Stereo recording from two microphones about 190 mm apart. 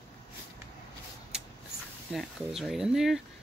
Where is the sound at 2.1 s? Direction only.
Centre (ahead or behind).